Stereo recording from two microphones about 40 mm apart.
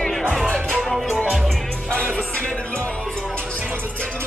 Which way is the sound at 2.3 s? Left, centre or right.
Left.